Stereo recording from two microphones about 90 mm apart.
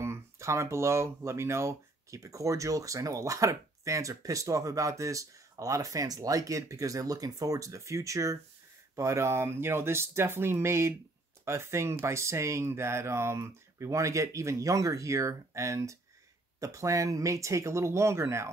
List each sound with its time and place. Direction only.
0.0 s speech: 30° right (ahead or behind)